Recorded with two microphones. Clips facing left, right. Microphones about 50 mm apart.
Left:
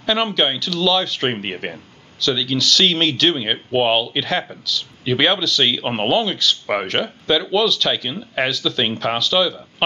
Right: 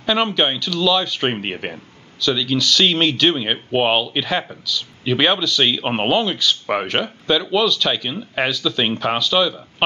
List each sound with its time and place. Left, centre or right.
0.0 s speech: centre